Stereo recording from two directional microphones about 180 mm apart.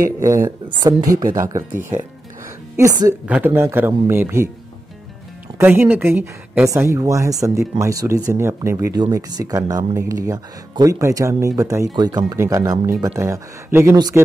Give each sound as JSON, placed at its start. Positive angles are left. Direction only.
{"t": 0.0, "sound": "speech", "side_deg": -15}
{"t": 5.6, "sound": "speech", "side_deg": -10}